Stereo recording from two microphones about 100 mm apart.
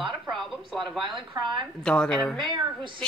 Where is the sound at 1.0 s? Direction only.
55° right (ahead or behind).